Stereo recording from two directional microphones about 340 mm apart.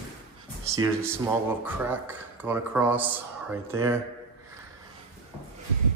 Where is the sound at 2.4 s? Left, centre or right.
Centre.